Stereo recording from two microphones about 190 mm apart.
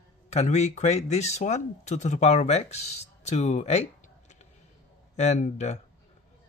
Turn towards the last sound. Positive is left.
turn(degrees=35)  # may be behind; listen again after turning